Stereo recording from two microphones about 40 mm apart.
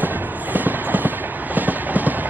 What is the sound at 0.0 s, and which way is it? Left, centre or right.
Train, right.